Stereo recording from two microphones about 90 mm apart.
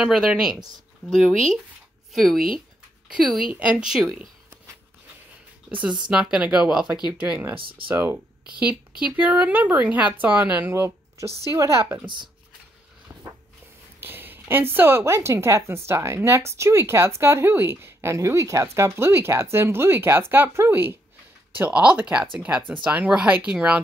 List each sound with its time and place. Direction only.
0.0 s speech: 5° right (ahead or behind)
3.1 s speech: 5° right (ahead or behind)
5.7 s speech: 15° right (ahead or behind)
7.5 s speech: 75° right (ahead or behind)
7.9 s speech: 20° right (ahead or behind)
13.1 s walk: 20° right (ahead or behind)
13.9 s speech: 25° right (ahead or behind)